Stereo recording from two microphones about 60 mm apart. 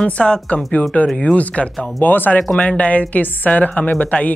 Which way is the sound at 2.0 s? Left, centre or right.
Left.